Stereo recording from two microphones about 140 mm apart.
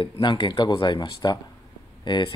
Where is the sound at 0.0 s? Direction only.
30° left (ahead or behind).